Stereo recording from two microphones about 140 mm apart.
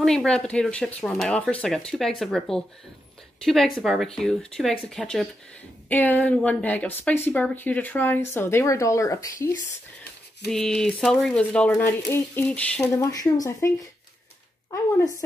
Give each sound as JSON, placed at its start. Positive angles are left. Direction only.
{"t": 0.0, "sound": "speech", "side_deg": 5}
{"t": 10.4, "sound": "speech", "side_deg": 5}
{"t": 11.7, "sound": "speech", "side_deg": 20}
{"t": 12.9, "sound": "speech", "side_deg": 25}